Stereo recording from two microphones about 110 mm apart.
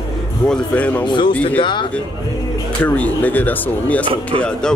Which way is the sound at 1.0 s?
45° left (ahead or behind).